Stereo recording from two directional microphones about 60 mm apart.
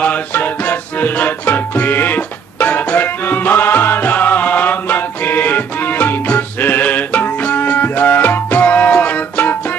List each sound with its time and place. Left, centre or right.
0.0 s music: left